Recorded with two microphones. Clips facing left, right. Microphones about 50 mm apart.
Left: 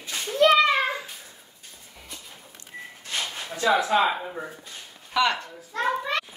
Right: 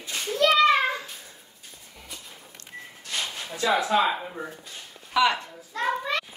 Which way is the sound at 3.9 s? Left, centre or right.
Left.